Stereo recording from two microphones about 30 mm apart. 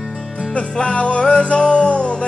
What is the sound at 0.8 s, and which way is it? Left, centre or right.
Music, left.